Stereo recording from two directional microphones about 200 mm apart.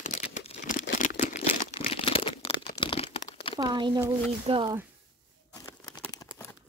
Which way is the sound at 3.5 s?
20° right (ahead or behind).